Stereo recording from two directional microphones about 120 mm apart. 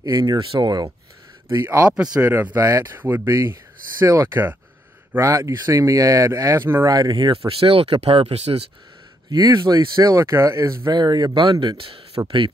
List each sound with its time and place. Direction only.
0.0 s speech: 35° right (ahead or behind)
0.4 s speech: 45° right (ahead or behind)
1.5 s speech: 25° right (ahead or behind)
1.9 s speech: 10° right (ahead or behind)
2.5 s speech: 25° right (ahead or behind)
7.0 s speech: 35° right (ahead or behind)
7.4 s speech: 55° right (ahead or behind)
9.3 s speech: 35° right (ahead or behind)
10.9 s speech: 35° right (ahead or behind)
11.7 s speech: 50° right (ahead or behind)